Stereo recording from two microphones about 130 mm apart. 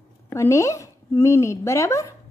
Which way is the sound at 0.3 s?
20° left (ahead or behind).